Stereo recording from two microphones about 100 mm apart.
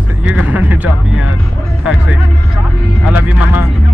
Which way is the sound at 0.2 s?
15° right (ahead or behind).